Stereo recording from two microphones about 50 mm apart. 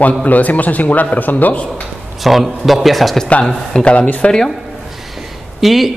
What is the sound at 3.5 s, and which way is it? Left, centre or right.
Speech, centre.